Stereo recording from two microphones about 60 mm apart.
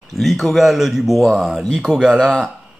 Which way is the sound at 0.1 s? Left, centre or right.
Centre.